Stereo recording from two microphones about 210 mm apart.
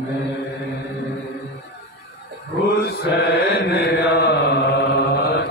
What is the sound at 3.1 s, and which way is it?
Mantra, 50° left (ahead or behind).